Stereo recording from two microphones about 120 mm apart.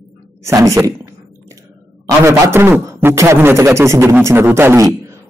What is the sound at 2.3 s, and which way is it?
A man's voice, 20° right (ahead or behind).